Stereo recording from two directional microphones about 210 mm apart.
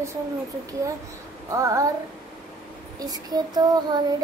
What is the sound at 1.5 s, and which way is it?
Child singing, 15° right (ahead or behind).